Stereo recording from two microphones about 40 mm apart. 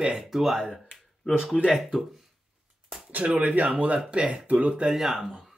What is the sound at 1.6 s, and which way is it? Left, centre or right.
Speech, centre.